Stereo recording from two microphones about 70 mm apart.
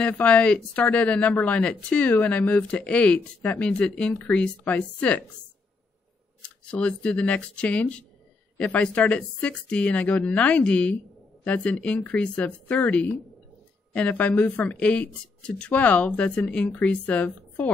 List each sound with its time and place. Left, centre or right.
0.0 s speech: centre
6.6 s speech: centre